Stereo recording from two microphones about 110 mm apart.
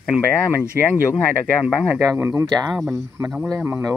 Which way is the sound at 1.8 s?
20° right (ahead or behind).